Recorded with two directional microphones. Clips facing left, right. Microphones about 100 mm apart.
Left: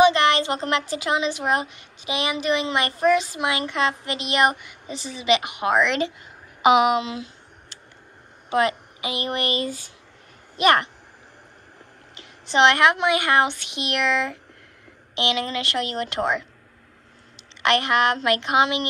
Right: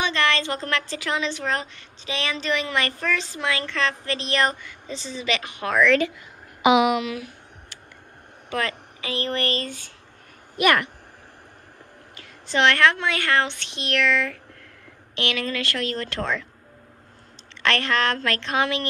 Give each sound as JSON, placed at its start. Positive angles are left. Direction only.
{"t": 0.0, "sound": "a woman's voice", "side_deg": 20}
{"t": 6.6, "sound": "a woman's voice", "side_deg": 40}
{"t": 8.5, "sound": "a woman's voice", "side_deg": 20}
{"t": 10.6, "sound": "a woman's voice", "side_deg": 30}
{"t": 12.2, "sound": "a woman's voice", "side_deg": 20}
{"t": 17.6, "sound": "a woman's voice", "side_deg": 15}